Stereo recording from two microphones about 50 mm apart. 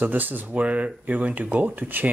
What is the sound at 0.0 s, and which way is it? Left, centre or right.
Speech, right.